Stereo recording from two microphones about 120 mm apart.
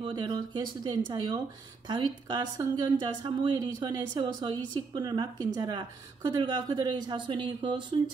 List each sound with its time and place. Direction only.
0.0 s a woman's voice: 35° right (ahead or behind)